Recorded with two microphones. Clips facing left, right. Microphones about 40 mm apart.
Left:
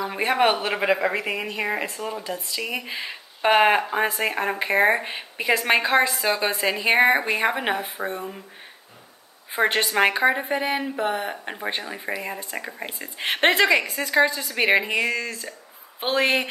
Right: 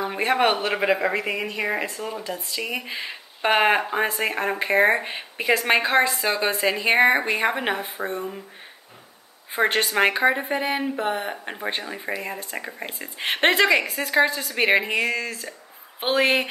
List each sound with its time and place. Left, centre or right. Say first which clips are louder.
0.1 s a woman's voice: left 1 dB; centre
9.5 s a woman's voice: even; centre